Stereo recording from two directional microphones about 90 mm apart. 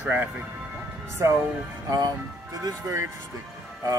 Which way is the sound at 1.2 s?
40° right (ahead or behind).